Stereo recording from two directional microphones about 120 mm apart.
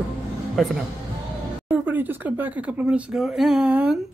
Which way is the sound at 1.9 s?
15° right (ahead or behind).